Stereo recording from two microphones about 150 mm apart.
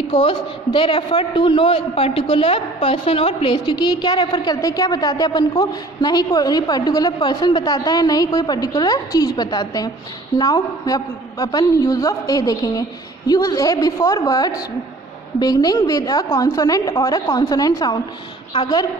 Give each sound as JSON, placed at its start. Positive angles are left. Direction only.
{"t": 0.1, "sound": "a woman's voice", "side_deg": 40}